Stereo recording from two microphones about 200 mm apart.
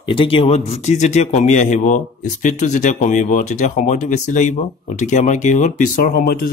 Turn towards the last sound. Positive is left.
turn(degrees=45)  # may be behind; listen again after turning